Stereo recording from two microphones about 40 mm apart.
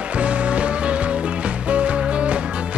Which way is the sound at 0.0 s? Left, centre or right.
Right.